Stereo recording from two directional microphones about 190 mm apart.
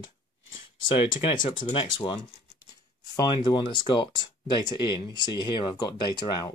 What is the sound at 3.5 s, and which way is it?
Speech, 25° left (ahead or behind).